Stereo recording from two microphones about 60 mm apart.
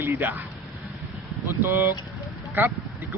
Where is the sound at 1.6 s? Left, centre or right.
Right.